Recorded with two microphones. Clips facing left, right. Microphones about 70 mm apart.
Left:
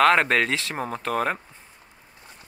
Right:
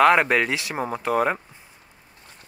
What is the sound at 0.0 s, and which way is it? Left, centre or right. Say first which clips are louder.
Speech: right 2 dB; centre.